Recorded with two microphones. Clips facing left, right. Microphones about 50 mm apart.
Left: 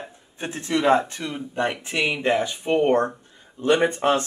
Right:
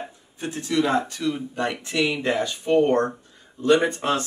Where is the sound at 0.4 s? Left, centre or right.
Left.